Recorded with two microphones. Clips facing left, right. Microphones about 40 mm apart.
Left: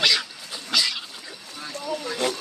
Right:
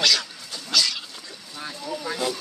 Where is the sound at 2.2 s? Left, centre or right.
Left.